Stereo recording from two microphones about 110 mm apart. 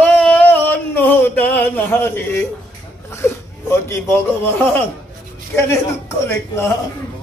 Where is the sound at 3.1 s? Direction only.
25° left (ahead or behind).